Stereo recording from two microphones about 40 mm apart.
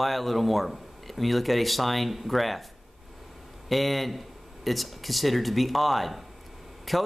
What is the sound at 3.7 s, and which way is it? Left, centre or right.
A man's voice, centre.